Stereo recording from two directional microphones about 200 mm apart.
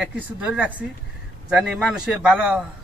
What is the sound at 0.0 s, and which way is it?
A man's voice, 5° right (ahead or behind).